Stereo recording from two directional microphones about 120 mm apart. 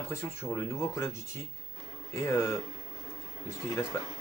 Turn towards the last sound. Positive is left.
turn(degrees=25)  # may be behind; listen again after turning